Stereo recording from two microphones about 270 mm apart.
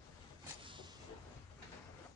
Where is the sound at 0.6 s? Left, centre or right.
Centre.